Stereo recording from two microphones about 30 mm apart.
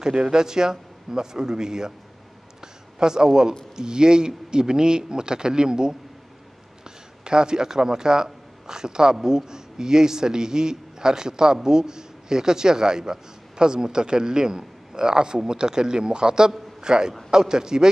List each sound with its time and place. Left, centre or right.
0.0 s speech: right
2.6 s a sound: right
3.7 s speech: right
7.2 s a man's voice: right